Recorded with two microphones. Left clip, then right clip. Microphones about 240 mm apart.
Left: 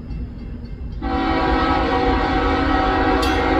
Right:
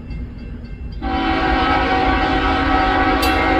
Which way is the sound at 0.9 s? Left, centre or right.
Centre.